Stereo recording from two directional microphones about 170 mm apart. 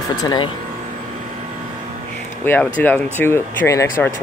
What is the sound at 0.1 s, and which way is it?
Speech, 25° left (ahead or behind).